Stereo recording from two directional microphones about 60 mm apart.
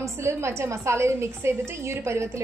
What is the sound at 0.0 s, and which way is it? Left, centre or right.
A woman's voice, right.